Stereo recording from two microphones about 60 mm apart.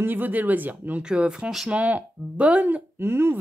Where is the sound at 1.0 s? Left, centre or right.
Centre.